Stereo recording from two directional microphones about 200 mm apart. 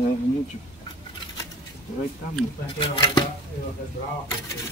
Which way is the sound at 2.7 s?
25° left (ahead or behind).